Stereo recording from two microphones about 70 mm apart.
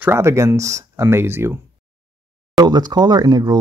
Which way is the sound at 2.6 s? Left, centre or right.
Right.